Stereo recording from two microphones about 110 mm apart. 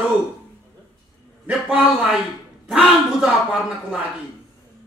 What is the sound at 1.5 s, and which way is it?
A man's voice, 10° right (ahead or behind).